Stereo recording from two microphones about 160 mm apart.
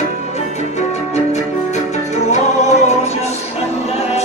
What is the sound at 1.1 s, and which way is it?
Music, 45° left (ahead or behind).